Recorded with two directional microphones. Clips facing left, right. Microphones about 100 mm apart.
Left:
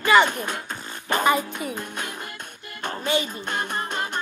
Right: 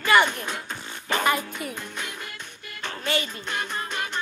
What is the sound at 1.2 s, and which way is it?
Speech, 10° left (ahead or behind).